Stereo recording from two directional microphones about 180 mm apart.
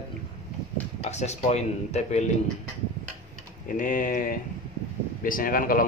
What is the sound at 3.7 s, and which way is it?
Speech, 50° left (ahead or behind).